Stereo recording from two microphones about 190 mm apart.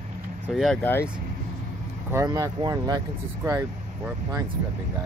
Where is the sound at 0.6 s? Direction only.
5° left (ahead or behind).